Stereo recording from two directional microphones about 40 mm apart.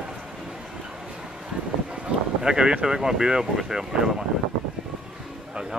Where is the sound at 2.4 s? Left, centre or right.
Centre.